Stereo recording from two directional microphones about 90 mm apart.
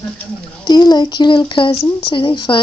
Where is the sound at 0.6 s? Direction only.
50° left (ahead or behind).